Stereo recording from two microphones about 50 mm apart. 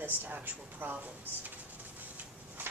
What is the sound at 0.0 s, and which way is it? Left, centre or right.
Speech, right.